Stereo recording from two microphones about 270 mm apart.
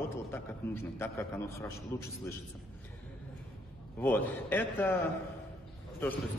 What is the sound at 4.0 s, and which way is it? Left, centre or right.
Speech, centre.